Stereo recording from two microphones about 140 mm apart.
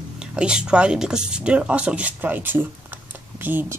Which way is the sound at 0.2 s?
5° right (ahead or behind).